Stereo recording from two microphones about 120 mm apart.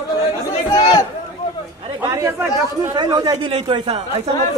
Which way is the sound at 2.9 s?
35° right (ahead or behind).